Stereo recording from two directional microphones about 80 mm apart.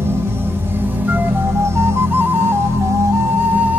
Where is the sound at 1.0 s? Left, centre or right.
Right.